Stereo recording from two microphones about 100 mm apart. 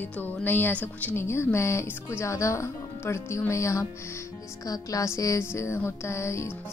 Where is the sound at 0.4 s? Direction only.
20° left (ahead or behind).